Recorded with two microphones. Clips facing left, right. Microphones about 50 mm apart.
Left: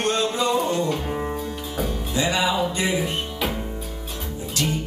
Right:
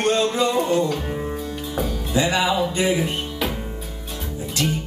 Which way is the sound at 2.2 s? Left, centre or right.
Right.